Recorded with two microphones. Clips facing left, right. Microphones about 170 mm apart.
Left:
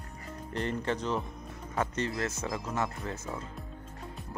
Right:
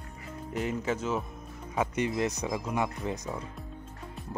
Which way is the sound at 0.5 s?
5° right (ahead or behind).